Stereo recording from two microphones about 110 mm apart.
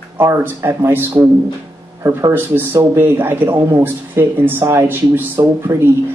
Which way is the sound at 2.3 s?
20° right (ahead or behind).